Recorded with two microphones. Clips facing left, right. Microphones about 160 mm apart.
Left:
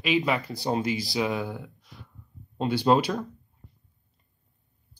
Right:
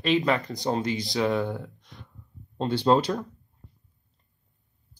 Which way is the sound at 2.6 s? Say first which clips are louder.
Even; 10° left (ahead or behind).